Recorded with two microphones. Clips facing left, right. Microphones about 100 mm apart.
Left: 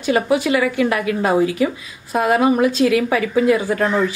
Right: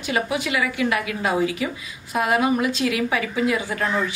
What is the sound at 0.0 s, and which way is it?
Speech, 35° left (ahead or behind).